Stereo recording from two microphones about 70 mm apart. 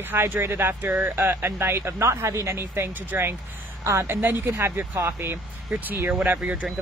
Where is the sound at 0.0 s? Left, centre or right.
Right.